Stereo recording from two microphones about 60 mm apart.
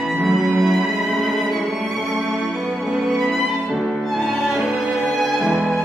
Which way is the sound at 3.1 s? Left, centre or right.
Centre.